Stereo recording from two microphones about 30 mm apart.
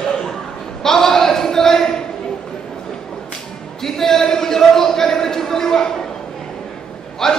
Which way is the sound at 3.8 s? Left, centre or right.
Centre.